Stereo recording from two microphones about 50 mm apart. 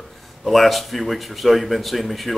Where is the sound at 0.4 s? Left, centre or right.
Centre.